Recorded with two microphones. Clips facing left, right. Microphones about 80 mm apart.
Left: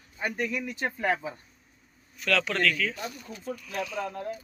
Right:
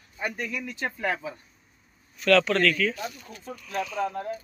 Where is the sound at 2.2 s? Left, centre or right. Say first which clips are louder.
Right 6 dB; centre.